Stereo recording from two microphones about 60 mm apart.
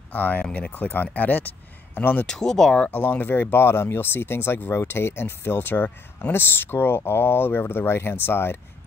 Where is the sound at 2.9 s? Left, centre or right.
Left.